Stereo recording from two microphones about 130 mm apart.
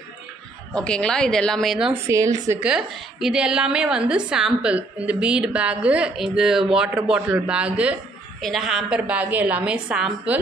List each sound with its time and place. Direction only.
0.7 s a woman's voice: 5° left (ahead or behind)
2.0 s a woman's voice: 25° right (ahead or behind)
2.6 s a woman's voice: 5° right (ahead or behind)